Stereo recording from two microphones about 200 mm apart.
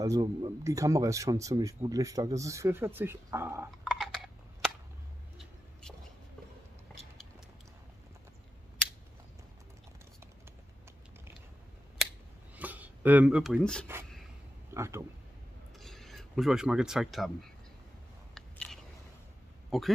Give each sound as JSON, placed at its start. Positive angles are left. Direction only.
{"t": 0.0, "sound": "speech", "side_deg": -15}
{"t": 3.9, "sound": "a sound", "side_deg": 0}
{"t": 5.4, "sound": "vehicle", "side_deg": 5}
{"t": 12.5, "sound": "a sound", "side_deg": -10}
{"t": 14.7, "sound": "speech", "side_deg": -15}
{"t": 15.8, "sound": "speech", "side_deg": 0}
{"t": 18.3, "sound": "biting", "side_deg": 0}
{"t": 19.7, "sound": "speech", "side_deg": 0}